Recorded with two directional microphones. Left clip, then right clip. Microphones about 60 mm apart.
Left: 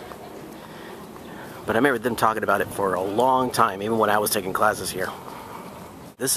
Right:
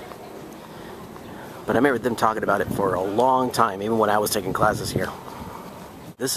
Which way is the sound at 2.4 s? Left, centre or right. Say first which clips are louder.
Even; right.